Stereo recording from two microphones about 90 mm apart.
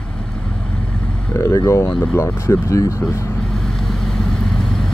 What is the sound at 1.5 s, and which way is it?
Speech, 30° left (ahead or behind).